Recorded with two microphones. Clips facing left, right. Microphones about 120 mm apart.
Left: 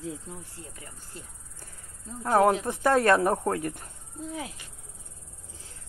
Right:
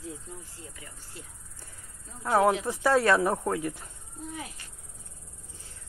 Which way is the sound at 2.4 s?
40° left (ahead or behind).